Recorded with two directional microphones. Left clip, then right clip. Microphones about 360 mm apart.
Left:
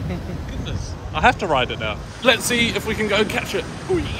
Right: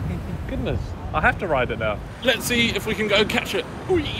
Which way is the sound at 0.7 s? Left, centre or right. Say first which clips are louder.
Right 4 dB; centre.